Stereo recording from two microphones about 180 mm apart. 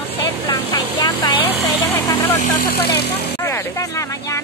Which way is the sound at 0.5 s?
20° left (ahead or behind).